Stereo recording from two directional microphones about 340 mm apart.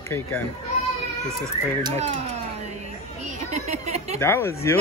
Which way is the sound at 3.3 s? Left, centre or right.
Centre.